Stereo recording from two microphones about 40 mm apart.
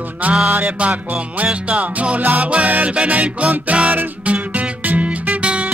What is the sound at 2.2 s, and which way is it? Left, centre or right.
Music, right.